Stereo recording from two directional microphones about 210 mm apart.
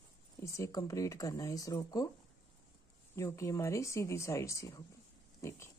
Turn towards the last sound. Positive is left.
turn(degrees=15)  # may be behind; listen again after turning